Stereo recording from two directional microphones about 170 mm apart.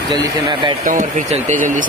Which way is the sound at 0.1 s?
25° right (ahead or behind).